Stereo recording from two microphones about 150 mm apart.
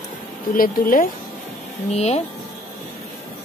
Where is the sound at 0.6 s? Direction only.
70° left (ahead or behind).